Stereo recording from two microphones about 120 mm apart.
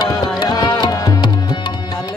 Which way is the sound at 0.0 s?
35° left (ahead or behind).